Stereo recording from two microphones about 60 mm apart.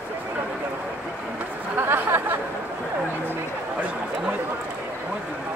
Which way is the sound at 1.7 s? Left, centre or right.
Right.